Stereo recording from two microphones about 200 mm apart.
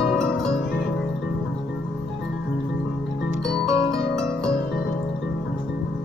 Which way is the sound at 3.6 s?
15° right (ahead or behind).